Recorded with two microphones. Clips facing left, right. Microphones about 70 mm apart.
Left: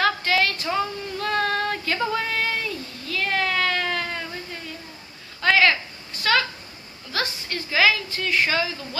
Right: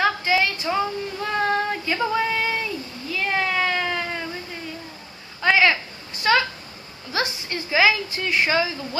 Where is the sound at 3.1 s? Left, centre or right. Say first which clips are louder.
Right 1 dB; centre.